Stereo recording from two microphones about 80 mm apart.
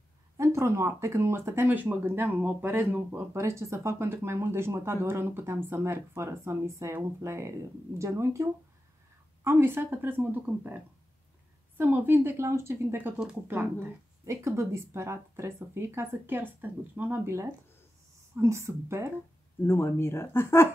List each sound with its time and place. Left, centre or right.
0.4 s speech: right
3.3 s speech: right
11.8 s speech: right
19.6 s speech: left